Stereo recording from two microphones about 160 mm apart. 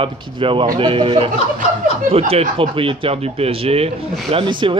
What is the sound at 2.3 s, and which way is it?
A man's voice, 35° right (ahead or behind).